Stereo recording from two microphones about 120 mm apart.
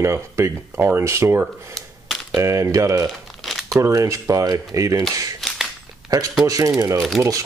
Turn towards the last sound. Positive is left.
turn(degrees=0)  # may be behind; listen again after turning